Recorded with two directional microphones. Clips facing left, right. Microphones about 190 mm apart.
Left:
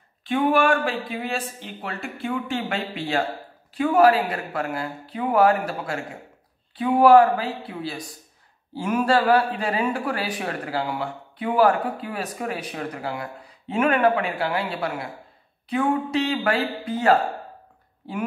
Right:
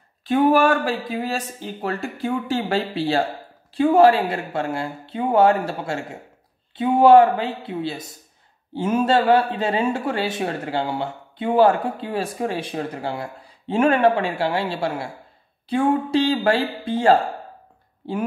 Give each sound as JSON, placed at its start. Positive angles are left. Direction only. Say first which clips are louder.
{"t": 0.2, "sound": "speech", "louder": "right 4 dB", "side_deg": -40}